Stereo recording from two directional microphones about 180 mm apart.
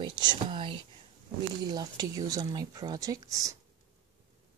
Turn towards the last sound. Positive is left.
turn(degrees=-20)  # may be behind; listen again after turning